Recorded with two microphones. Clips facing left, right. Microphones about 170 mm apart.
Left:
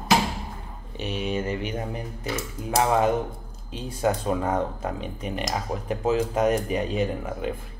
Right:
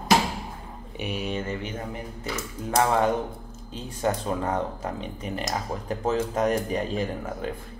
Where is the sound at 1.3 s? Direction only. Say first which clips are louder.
Left 3 dB; 10° left (ahead or behind).